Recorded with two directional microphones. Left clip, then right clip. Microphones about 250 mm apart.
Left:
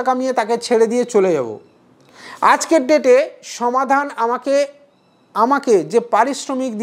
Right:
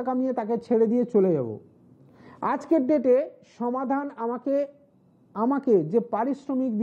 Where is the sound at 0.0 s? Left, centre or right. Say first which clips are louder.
Left 10 dB; centre.